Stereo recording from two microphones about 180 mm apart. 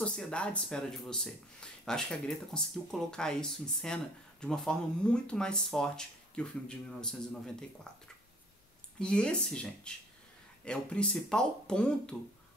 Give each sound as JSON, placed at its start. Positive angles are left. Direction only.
{"t": 0.0, "sound": "speech", "side_deg": 5}
{"t": 9.0, "sound": "speech", "side_deg": 5}